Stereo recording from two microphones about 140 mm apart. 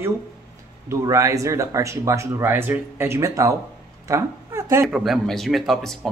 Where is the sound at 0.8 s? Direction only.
20° right (ahead or behind).